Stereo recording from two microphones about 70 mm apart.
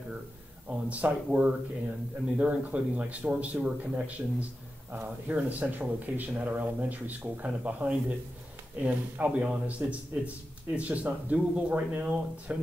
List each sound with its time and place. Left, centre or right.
0.7 s speech: right